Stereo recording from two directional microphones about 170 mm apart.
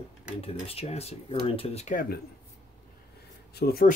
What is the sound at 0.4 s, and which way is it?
Speech, 35° left (ahead or behind).